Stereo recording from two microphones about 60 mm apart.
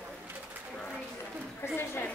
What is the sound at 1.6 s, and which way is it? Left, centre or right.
Speech, left.